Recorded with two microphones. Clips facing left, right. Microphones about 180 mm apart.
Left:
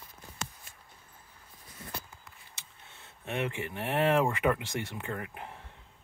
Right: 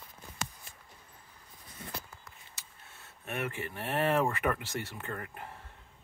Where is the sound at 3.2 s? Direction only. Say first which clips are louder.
Left 3 dB; 20° left (ahead or behind).